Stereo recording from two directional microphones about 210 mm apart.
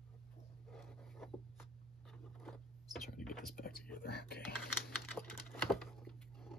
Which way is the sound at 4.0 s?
50° left (ahead or behind).